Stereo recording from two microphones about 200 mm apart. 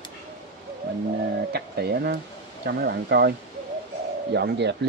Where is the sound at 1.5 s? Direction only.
55° right (ahead or behind).